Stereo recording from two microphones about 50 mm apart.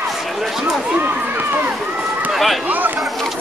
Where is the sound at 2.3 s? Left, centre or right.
Centre.